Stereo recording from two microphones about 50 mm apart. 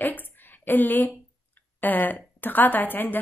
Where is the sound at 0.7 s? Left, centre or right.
Left.